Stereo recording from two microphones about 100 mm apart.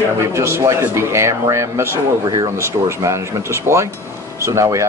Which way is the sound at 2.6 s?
30° right (ahead or behind).